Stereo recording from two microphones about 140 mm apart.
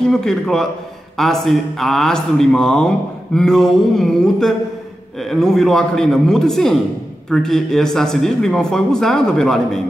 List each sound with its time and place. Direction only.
0.1 s speech: 5° left (ahead or behind)